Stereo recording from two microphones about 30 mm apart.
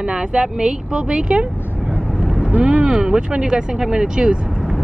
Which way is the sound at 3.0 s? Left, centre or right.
Right.